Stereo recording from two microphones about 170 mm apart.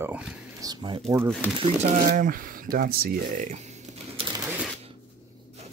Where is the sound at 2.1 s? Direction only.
55° right (ahead or behind).